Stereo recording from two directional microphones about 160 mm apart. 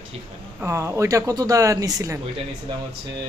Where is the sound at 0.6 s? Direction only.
15° right (ahead or behind).